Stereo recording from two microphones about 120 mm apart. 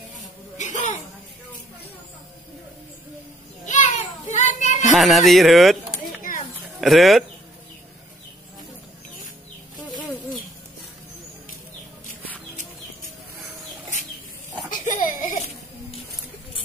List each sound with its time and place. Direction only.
0.6 s cough: 90° left
3.6 s a sound: 90° left
4.9 s speech: centre (ahead or behind)
14.7 s laughter: 90° left